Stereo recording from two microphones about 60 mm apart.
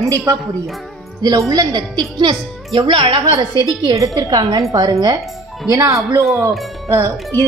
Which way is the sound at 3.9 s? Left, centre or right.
Right.